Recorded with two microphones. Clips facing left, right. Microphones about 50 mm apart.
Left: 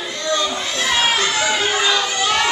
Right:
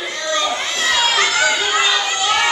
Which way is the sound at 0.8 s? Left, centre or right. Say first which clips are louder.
Right 1 dB; centre.